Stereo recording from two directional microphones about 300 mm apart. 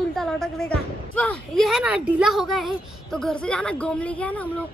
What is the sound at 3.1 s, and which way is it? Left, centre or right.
Speech, centre.